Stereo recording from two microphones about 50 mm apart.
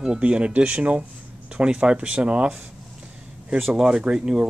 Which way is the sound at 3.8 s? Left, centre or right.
Centre.